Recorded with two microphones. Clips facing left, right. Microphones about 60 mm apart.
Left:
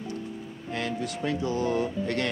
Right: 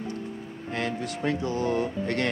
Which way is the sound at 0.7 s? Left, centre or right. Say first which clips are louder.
Right 1 dB; right.